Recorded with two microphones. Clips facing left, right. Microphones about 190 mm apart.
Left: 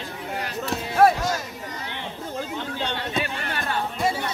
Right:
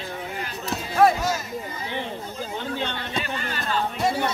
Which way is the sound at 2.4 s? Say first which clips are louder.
Right 4 dB; 70° left (ahead or behind).